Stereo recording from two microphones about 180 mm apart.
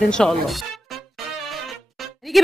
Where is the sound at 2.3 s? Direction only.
Centre (ahead or behind).